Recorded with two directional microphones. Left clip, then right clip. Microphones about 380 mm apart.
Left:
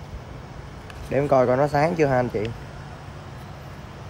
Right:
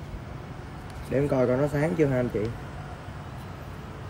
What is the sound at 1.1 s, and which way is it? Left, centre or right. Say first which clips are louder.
Speech: left 5 dB; centre.